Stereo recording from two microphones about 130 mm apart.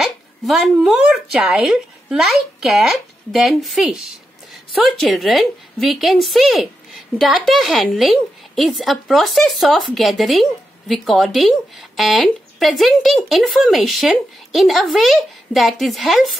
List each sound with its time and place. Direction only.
0.0 s speech: centre (ahead or behind)